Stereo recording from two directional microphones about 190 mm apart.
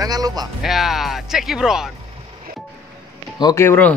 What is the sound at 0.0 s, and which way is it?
Music, 20° right (ahead or behind).